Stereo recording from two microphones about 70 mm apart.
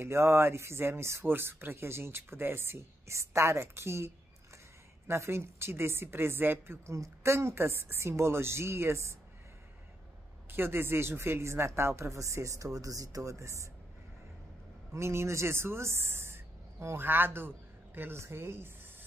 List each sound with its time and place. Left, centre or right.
0.0 s speech: right
6.9 s speech: right
10.5 s speech: right
15.0 s speech: right